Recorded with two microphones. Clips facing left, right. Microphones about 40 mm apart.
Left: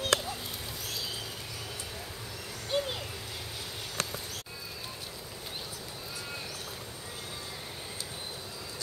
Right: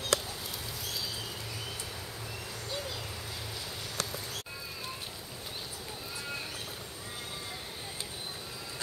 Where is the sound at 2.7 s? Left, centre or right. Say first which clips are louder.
Left 9 dB; left.